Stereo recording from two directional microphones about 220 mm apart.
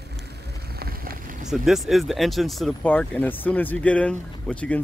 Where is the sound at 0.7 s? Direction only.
45° right (ahead or behind).